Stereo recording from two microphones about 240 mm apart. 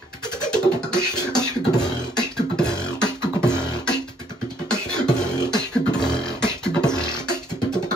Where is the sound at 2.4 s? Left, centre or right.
Centre.